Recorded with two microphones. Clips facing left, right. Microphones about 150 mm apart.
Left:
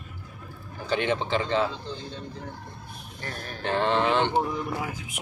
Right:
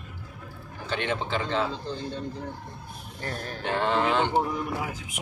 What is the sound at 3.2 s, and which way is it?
Speech, 35° right (ahead or behind).